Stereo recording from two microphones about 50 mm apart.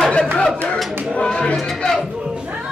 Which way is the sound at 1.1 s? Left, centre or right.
Centre.